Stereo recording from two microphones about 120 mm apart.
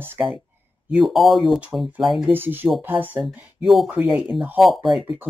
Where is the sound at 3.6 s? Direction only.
Centre (ahead or behind).